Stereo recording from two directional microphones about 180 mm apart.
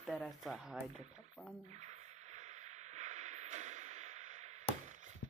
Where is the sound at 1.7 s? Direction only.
40° right (ahead or behind).